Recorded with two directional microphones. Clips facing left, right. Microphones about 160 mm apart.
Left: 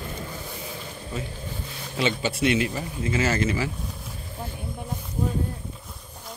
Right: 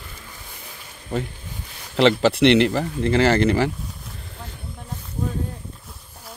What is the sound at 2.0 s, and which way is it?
Speech, 75° right (ahead or behind).